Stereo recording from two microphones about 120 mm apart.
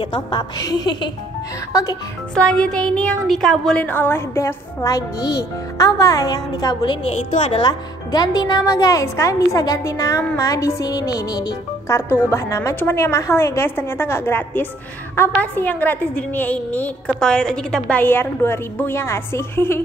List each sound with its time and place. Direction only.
0.0 s a woman's voice: 40° left (ahead or behind)
2.3 s a woman's voice: 10° left (ahead or behind); by 7.0 s 35° left (ahead or behind)
7.1 s a woman's voice: 60° left (ahead or behind)
7.6 s a woman's voice: 35° left (ahead or behind)